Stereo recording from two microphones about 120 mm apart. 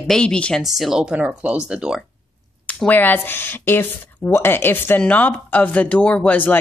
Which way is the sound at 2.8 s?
15° left (ahead or behind).